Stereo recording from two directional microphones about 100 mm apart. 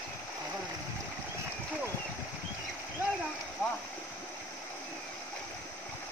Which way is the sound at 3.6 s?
20° left (ahead or behind).